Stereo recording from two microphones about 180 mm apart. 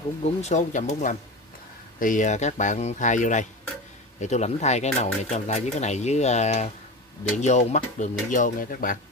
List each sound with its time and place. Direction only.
0.2 s speech: 40° left (ahead or behind)